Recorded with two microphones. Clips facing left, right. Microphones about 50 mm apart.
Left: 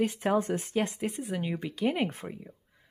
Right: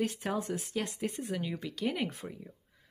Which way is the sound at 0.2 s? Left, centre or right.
Left.